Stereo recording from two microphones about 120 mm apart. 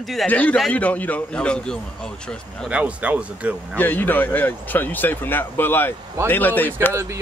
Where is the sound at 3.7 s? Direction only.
15° left (ahead or behind).